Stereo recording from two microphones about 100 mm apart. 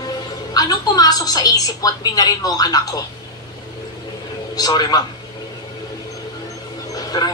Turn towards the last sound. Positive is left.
turn(degrees=40)  # may be behind; listen again after turning